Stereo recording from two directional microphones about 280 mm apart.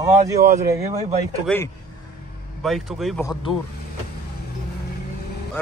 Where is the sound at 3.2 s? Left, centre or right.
Centre.